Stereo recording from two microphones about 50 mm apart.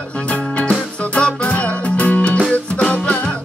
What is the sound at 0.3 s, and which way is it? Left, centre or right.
Music, left.